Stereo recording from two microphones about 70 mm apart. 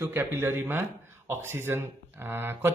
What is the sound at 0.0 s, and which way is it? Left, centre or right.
A man's voice, right.